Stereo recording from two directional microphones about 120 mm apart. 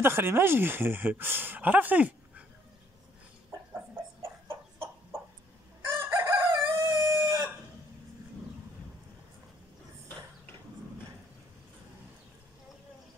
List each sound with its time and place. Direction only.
0.0 s speech: 20° right (ahead or behind)
3.7 s chicken: 20° right (ahead or behind)